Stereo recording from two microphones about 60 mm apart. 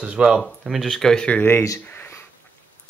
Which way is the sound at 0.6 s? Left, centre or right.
Centre.